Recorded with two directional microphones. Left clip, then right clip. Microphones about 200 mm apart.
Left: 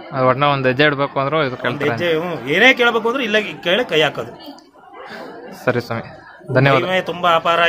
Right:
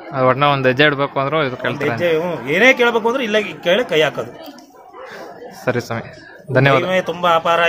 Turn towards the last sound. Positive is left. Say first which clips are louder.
# even
turn(degrees=0)  # may be behind; listen again after turning